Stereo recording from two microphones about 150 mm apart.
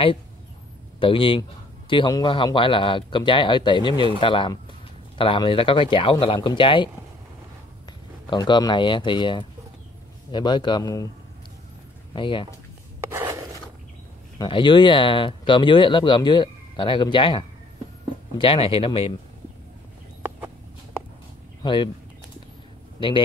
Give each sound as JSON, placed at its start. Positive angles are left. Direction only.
{"t": 0.9, "sound": "a man's voice", "side_deg": 35}
{"t": 8.3, "sound": "a man's voice", "side_deg": 30}
{"t": 12.1, "sound": "speech", "side_deg": 35}
{"t": 13.1, "sound": "a sound", "side_deg": -15}
{"t": 14.4, "sound": "speech", "side_deg": 30}
{"t": 20.2, "sound": "a sound", "side_deg": -15}
{"t": 21.6, "sound": "speech", "side_deg": 30}
{"t": 22.9, "sound": "a man's voice", "side_deg": 35}